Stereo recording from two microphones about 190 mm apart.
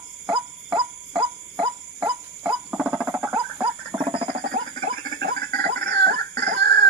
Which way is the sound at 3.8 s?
30° right (ahead or behind).